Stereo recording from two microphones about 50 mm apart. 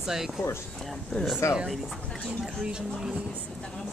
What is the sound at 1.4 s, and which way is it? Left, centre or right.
Speech, left.